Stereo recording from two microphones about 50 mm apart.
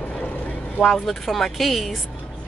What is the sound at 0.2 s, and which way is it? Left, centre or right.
Vehicle, left.